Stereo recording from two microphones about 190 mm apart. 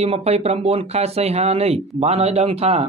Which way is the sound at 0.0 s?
35° right (ahead or behind).